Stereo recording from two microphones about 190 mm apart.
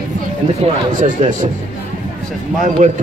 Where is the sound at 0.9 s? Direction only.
40° right (ahead or behind).